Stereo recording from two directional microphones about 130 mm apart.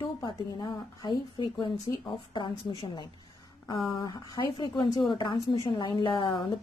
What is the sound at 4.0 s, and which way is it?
A woman's voice, 35° left (ahead or behind).